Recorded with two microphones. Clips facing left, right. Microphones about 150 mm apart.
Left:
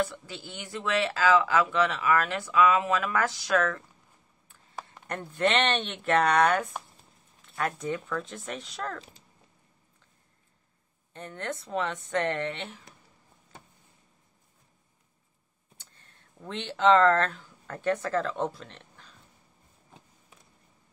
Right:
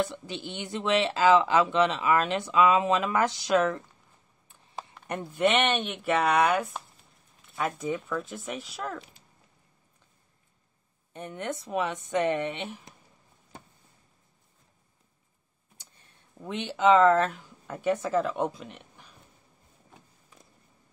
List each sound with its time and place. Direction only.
0.0 s speech: 20° right (ahead or behind)
4.5 s a sound: 25° right (ahead or behind)
5.0 s speech: 10° right (ahead or behind)
11.1 s speech: 15° right (ahead or behind)
15.8 s speech: 15° right (ahead or behind)